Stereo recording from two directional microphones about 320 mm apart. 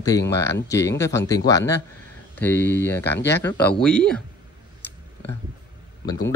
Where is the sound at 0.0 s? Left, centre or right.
Centre.